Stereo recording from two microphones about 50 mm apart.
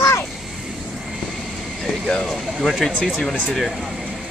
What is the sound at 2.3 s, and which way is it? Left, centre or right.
Speech, centre.